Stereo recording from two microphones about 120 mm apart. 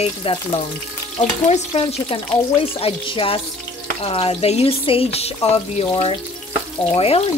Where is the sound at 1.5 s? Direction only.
55° left (ahead or behind).